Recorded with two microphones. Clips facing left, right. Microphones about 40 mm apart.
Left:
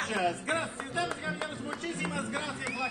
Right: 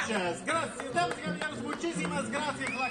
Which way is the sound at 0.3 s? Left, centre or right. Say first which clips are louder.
Right 1 dB; left.